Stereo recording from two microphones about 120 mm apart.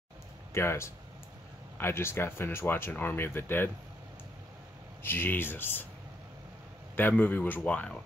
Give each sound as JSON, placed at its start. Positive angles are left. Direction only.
{"t": 0.6, "sound": "speech", "side_deg": 20}
{"t": 5.0, "sound": "speech", "side_deg": 20}
{"t": 7.0, "sound": "speech", "side_deg": 15}